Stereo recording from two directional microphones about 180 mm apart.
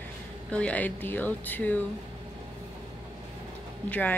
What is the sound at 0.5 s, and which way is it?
Speech, 5° left (ahead or behind).